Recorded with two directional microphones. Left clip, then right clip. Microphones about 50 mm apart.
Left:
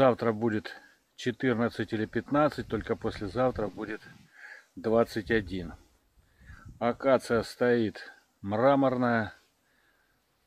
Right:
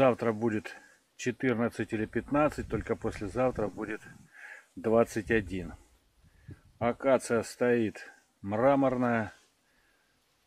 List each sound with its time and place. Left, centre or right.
0.0 s speech: centre
1.4 s speech: centre
6.8 s speech: centre
7.6 s speech: centre
7.9 s speech: centre
8.6 s speech: left
8.9 s speech: centre